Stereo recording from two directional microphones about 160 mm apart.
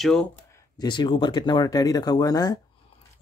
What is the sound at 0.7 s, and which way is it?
Speech, 30° left (ahead or behind).